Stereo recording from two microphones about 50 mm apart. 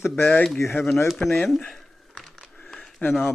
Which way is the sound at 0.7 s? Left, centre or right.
Centre.